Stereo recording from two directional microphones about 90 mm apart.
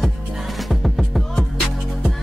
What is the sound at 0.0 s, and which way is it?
Music, centre (ahead or behind).